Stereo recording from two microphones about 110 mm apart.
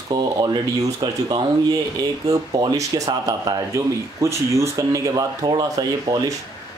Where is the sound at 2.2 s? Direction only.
30° right (ahead or behind).